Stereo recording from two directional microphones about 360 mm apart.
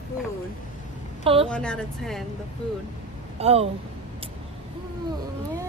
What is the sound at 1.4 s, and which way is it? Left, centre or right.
Speech, centre.